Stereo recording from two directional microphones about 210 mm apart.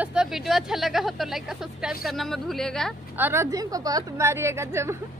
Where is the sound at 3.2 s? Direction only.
10° right (ahead or behind).